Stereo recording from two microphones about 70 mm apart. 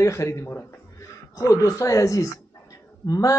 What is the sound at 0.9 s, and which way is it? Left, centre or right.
Speech, left.